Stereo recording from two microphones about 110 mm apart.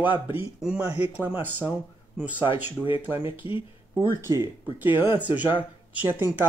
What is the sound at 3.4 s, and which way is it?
Speech, 55° left (ahead or behind).